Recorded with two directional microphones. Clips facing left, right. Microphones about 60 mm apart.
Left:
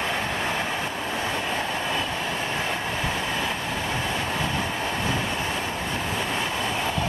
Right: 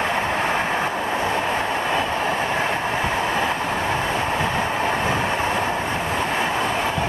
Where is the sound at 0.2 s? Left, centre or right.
Right.